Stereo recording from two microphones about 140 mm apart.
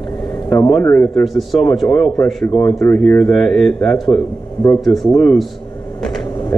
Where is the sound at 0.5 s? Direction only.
20° left (ahead or behind).